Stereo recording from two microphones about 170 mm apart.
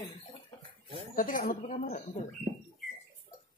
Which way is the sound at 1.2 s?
55° left (ahead or behind).